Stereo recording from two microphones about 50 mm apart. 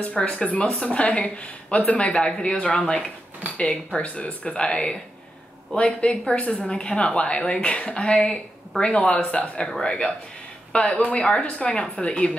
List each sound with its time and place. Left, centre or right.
0.0 s a woman's voice: left
6.7 s a woman's voice: centre
10.7 s a woman's voice: left
11.1 s a woman's voice: centre